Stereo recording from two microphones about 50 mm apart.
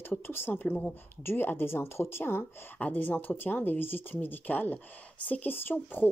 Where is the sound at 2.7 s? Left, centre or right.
Left.